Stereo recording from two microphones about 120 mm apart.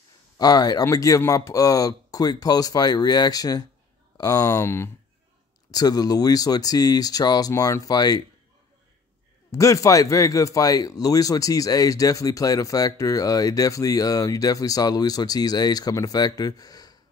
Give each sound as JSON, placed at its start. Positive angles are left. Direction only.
{"t": 0.4, "sound": "speech", "side_deg": 35}
{"t": 5.7, "sound": "speech", "side_deg": 30}
{"t": 9.5, "sound": "speech", "side_deg": 25}